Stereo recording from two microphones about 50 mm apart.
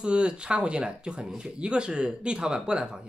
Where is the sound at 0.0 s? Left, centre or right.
Right.